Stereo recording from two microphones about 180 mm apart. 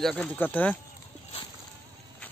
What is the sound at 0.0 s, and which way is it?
Speech, centre (ahead or behind).